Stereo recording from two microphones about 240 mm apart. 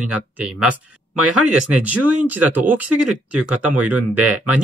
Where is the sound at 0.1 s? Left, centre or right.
Centre.